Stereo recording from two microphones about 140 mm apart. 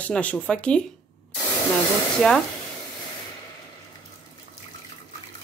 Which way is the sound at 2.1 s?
5° left (ahead or behind).